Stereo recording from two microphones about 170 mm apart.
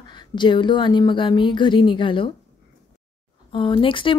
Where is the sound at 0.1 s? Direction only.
25° left (ahead or behind).